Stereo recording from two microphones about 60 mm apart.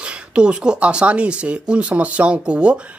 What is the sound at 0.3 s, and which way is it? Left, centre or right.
Speech, centre.